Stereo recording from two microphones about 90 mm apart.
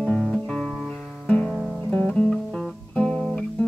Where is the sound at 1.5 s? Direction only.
10° right (ahead or behind).